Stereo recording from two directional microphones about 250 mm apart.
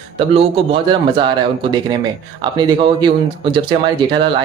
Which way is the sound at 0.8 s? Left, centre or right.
Centre.